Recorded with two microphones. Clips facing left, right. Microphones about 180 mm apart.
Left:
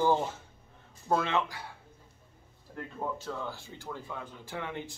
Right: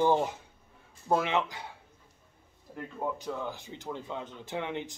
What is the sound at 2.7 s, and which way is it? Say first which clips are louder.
Speech: right 1 dB; 15° right (ahead or behind).